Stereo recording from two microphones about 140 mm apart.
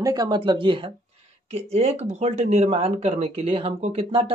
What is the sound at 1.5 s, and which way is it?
Speech, 50° right (ahead or behind).